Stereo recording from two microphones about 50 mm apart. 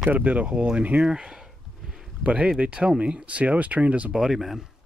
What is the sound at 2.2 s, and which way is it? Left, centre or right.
Speech, right.